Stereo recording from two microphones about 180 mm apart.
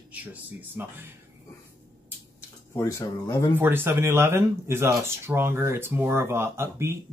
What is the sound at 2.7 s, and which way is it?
Speech, 15° left (ahead or behind).